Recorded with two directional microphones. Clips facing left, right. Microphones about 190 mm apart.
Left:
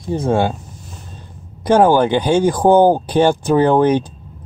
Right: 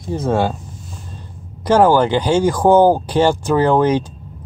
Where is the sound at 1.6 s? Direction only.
15° left (ahead or behind).